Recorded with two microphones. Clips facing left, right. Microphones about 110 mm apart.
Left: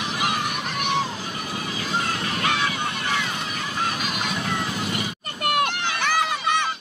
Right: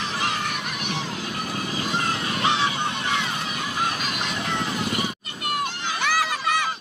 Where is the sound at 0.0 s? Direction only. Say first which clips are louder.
Left 1 dB; 15° left (ahead or behind).